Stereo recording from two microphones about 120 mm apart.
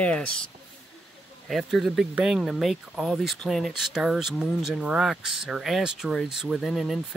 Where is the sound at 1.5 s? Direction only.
Centre (ahead or behind).